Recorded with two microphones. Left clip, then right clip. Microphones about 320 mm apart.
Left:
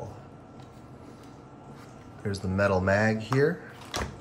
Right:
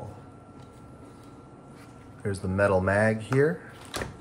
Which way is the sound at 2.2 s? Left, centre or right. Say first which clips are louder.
Right 2 dB; centre.